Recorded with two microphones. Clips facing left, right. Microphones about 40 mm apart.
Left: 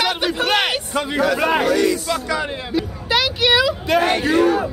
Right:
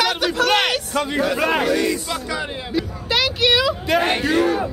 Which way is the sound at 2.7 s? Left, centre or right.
Centre.